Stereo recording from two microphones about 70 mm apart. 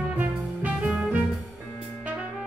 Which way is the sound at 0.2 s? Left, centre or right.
Right.